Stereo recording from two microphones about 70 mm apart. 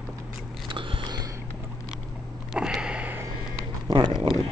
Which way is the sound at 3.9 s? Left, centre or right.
Right.